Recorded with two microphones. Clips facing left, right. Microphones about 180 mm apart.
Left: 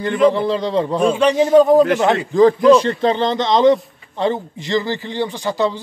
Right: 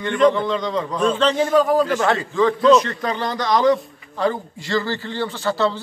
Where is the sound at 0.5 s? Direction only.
30° left (ahead or behind).